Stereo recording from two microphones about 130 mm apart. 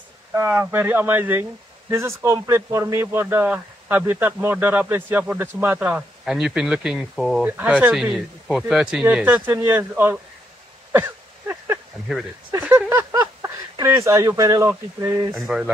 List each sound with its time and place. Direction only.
0.3 s a man's voice: 15° right (ahead or behind); by 7.4 s centre (ahead or behind)
7.4 s a man's voice: 10° right (ahead or behind)
10.9 s a sound: 20° right (ahead or behind)
12.4 s a man's voice: 15° right (ahead or behind)
13.1 s a sound: 30° right (ahead or behind)
13.8 s a man's voice: 20° right (ahead or behind)
15.3 s speech: centre (ahead or behind)